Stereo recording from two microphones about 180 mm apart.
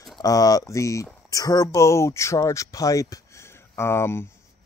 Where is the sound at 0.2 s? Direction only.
20° left (ahead or behind).